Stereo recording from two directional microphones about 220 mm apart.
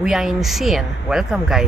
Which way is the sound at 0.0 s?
Centre (ahead or behind).